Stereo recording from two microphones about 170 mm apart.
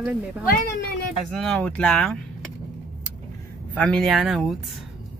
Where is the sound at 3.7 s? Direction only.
5° left (ahead or behind).